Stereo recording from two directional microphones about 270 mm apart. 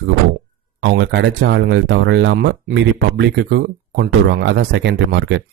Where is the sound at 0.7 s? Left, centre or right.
Right.